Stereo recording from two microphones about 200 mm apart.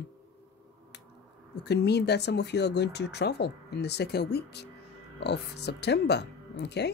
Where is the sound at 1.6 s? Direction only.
55° left (ahead or behind).